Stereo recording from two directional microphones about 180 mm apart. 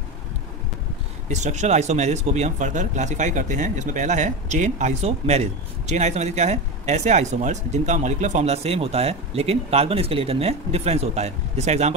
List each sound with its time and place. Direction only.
1.3 s speech: 40° right (ahead or behind)